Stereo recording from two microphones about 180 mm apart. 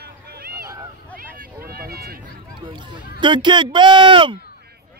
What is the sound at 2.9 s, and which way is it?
Speech, 25° right (ahead or behind).